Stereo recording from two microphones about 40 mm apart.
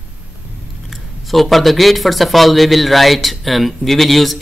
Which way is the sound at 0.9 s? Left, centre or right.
Centre.